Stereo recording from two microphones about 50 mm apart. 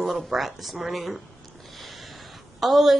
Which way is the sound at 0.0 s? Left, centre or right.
Centre.